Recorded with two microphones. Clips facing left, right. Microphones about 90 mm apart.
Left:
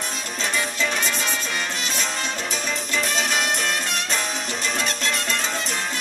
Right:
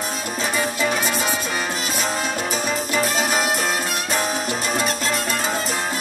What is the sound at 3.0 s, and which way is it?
Music, 5° right (ahead or behind).